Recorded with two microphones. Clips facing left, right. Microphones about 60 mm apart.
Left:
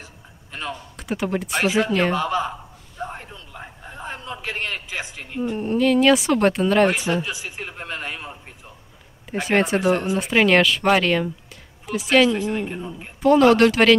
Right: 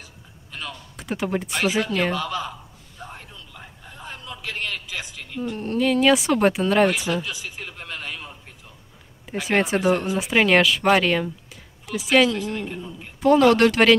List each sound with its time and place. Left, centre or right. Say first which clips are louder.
0.0 s a sound: left 2 dB; left
0.9 s speech: even; centre
1.6 s speech: left 3 dB; centre
2.1 s a sound: left 5 dB; left
5.8 s speech: left 2 dB; centre
7.1 s a sound: left 2 dB; left
9.3 s speech: left 2 dB; centre
12.3 s a man's voice: left 3 dB; left
13.2 s speech: left 1 dB; centre